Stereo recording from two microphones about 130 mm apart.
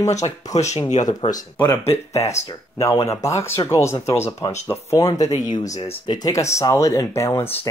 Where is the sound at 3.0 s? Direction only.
25° left (ahead or behind).